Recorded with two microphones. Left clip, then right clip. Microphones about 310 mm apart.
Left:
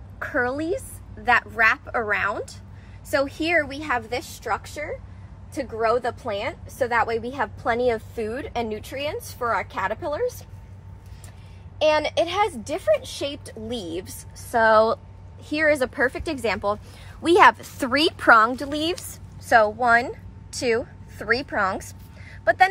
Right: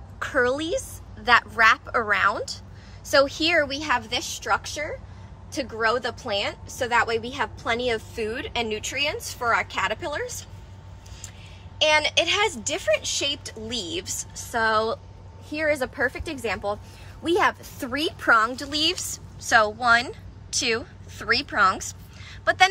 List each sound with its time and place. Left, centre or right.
0.2 s a woman's voice: centre
11.9 s a woman's voice: centre
13.3 s a woman's voice: centre